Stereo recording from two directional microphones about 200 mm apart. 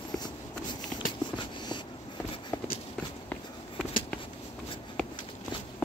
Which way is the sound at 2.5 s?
10° left (ahead or behind).